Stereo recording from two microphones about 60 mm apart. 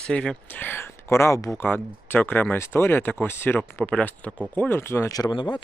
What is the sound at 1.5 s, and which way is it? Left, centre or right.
Speech, left.